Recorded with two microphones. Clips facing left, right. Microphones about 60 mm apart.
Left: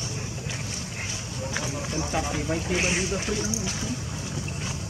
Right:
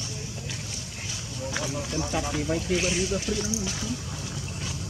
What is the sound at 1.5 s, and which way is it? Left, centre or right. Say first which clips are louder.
Speech: right 1 dB; centre.